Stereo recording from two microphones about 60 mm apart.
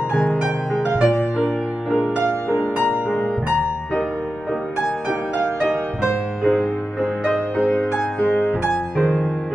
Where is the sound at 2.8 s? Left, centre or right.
Left.